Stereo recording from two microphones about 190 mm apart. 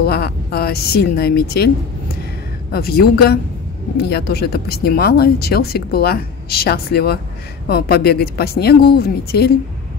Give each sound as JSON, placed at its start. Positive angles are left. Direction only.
{"t": 0.0, "sound": "speech", "side_deg": 55}
{"t": 2.7, "sound": "speech", "side_deg": 55}